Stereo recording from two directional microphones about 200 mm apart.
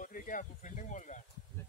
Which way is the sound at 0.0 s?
40° left (ahead or behind).